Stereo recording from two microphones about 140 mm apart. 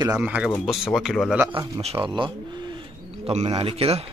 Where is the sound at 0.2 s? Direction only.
10° right (ahead or behind).